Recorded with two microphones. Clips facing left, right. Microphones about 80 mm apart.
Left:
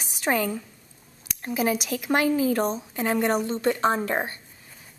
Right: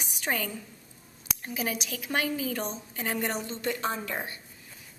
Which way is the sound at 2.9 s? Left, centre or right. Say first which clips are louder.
Left 7 dB; left.